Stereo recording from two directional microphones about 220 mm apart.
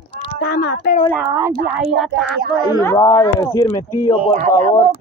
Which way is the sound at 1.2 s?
10° right (ahead or behind).